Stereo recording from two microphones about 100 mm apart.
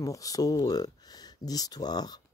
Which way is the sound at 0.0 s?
35° left (ahead or behind).